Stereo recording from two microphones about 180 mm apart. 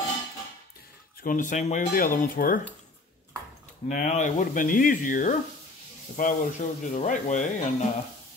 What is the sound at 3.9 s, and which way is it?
Speech, 45° left (ahead or behind).